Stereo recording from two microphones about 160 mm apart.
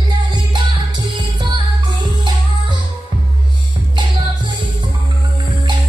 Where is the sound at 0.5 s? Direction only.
30° right (ahead or behind).